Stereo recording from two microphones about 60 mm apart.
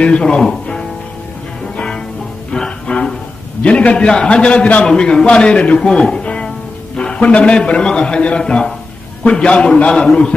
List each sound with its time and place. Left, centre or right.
0.0 s speech: centre
2.5 s music: centre
3.6 s a man's voice: centre